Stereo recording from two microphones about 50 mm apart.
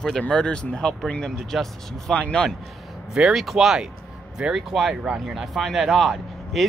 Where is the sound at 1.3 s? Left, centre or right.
Centre.